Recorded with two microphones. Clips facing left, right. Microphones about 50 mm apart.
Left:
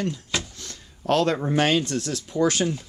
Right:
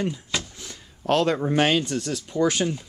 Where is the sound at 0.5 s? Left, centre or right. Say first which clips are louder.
Even; centre.